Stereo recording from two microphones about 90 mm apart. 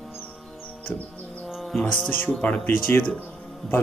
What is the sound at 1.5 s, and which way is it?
Music, centre (ahead or behind).